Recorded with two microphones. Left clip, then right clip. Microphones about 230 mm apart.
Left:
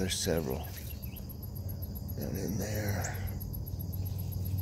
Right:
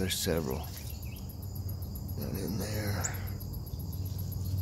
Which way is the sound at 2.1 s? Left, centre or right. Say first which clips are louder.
Even; centre.